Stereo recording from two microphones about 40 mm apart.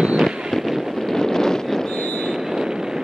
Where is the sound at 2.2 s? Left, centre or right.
Centre.